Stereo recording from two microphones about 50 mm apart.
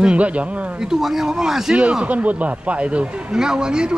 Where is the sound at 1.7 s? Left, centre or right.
Right.